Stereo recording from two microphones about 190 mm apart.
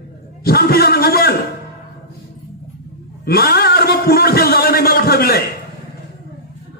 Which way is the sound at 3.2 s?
55° left (ahead or behind).